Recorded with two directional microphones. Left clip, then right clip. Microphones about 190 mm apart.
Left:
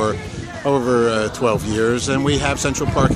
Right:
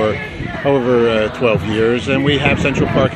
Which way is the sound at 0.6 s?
15° left (ahead or behind).